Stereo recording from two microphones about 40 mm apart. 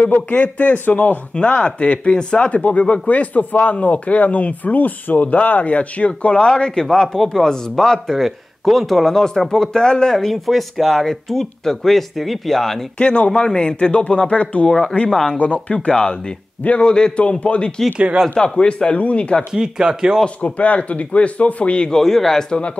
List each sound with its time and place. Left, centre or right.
0.0 s speech: left
0.8 s speech: left
1.3 s speech: left
6.3 s speech: left
10.1 s speech: centre
12.9 s speech: left
14.7 s speech: centre
15.3 s speech: left
17.9 s speech: right
18.6 s speech: left
19.5 s speech: centre
20.4 s speech: left
21.9 s speech: centre